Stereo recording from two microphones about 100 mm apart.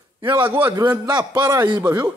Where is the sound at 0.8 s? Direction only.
35° right (ahead or behind).